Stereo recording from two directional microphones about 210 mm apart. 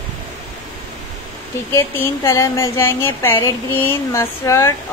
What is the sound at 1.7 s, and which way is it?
Speech, 15° left (ahead or behind).